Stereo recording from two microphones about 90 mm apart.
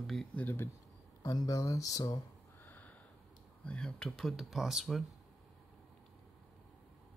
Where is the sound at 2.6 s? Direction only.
20° left (ahead or behind).